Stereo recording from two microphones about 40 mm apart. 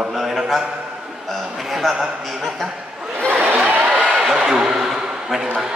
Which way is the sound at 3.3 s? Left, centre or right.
Right.